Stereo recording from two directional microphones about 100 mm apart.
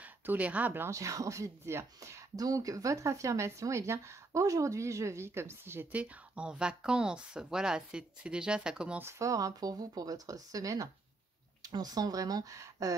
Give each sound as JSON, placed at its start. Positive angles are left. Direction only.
{"t": 0.0, "sound": "speech", "side_deg": -15}
{"t": 0.8, "sound": "speech", "side_deg": -30}
{"t": 9.0, "sound": "speech", "side_deg": -35}